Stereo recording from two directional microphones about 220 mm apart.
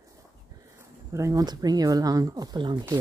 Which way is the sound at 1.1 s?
15° right (ahead or behind).